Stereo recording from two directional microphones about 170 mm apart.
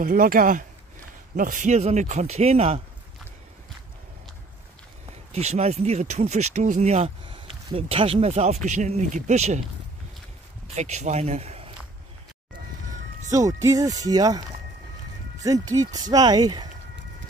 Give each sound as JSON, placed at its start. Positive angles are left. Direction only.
{"t": 0.0, "sound": "speech", "side_deg": -55}
{"t": 5.3, "sound": "speech", "side_deg": -40}
{"t": 10.8, "sound": "speech", "side_deg": -40}
{"t": 13.3, "sound": "speech", "side_deg": -20}
{"t": 15.4, "sound": "speech", "side_deg": -20}